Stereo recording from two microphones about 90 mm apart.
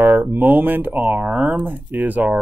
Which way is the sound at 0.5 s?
20° right (ahead or behind).